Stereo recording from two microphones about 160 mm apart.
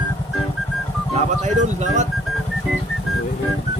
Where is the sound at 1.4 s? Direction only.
50° right (ahead or behind).